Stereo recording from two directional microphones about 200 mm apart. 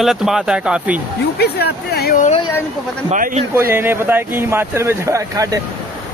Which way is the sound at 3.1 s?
40° right (ahead or behind).